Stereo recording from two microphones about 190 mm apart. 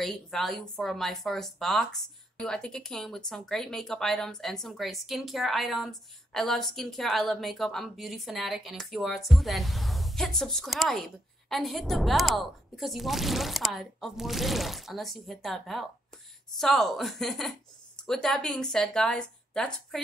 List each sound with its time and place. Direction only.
0.0 s speech: centre (ahead or behind)